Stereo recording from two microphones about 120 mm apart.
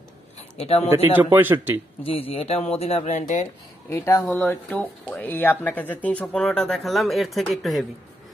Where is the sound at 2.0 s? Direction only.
55° left (ahead or behind); by 3.4 s 85° left.